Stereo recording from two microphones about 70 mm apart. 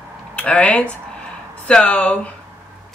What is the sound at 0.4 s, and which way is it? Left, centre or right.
Speech, centre.